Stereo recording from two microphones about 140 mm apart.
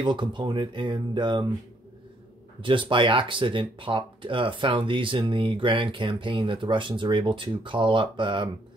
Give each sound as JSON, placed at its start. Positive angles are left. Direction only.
{"t": 0.0, "sound": "speech", "side_deg": -35}
{"t": 2.6, "sound": "speech", "side_deg": -35}